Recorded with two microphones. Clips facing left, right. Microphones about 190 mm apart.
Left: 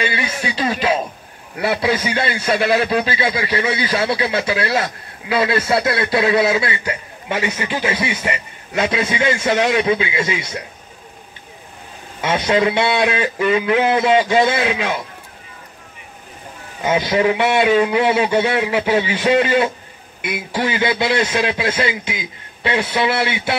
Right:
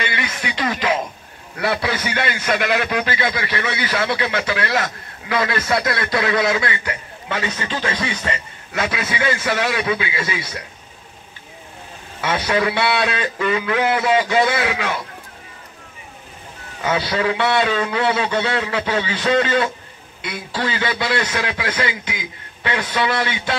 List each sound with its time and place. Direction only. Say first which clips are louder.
0.0 s music: left 3 dB; 35° left (ahead or behind)
1.6 s a man's voice: left 3 dB; 20° left (ahead or behind)
2.6 s a man's voice: left 6 dB; 30° left (ahead or behind)
3.1 s a man's voice: left 3 dB; 10° left (ahead or behind)
4.7 s a man's voice: left 2 dB; 30° left (ahead or behind)
7.2 s a man's voice: left 3 dB; 15° left (ahead or behind)
12.2 s a man's voice: left 3 dB; 20° left (ahead or behind)
16.8 s a man's voice: left 4 dB; 15° left (ahead or behind)